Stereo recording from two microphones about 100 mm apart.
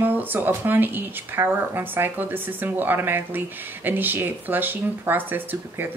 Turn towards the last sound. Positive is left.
turn(degrees=-20)  # may be behind; listen again after turning